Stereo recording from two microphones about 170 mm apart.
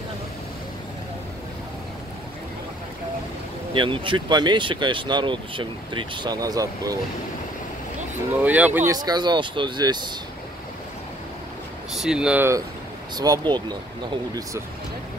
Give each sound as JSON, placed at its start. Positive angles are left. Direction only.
{"t": 3.7, "sound": "speech", "side_deg": -30}
{"t": 8.3, "sound": "speech", "side_deg": -10}
{"t": 8.9, "sound": "speech", "side_deg": -25}
{"t": 11.9, "sound": "speech", "side_deg": -5}